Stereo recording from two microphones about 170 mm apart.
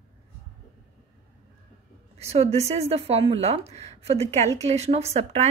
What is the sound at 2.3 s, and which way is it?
A woman's voice, 40° right (ahead or behind).